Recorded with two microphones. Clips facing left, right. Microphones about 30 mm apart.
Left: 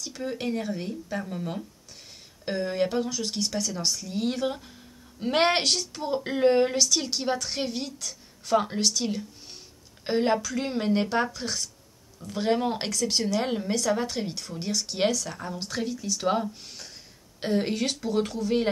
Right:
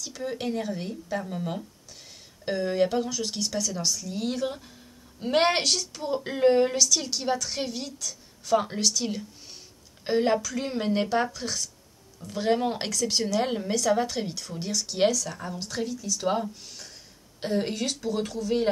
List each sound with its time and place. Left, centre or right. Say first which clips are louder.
0.0 s a sound: even; centre
0.3 s a woman's voice: even; centre
5.6 s speech: even; left
6.0 s a woman's voice: even; centre
8.5 s a woman's voice: left 1 dB; centre
15.9 s speech: left 1 dB; left
16.2 s a woman's voice: left 1 dB; centre
17.8 s speech: left 2 dB; left